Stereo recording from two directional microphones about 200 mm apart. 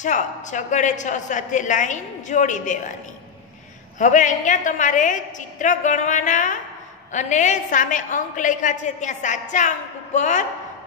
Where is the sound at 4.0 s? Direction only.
40° left (ahead or behind).